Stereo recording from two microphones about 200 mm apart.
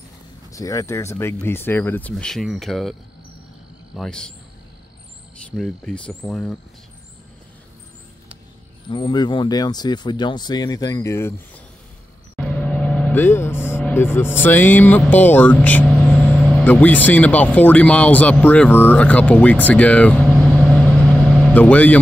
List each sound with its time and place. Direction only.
0.5 s speech: 15° left (ahead or behind); by 3.0 s centre (ahead or behind)
3.9 s cricket: 5° left (ahead or behind)
5.6 s cricket: 5° left (ahead or behind)
8.9 s speech: 25° left (ahead or behind); by 21.9 s 5° left (ahead or behind)